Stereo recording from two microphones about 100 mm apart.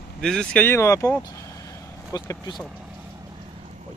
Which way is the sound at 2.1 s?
35° left (ahead or behind).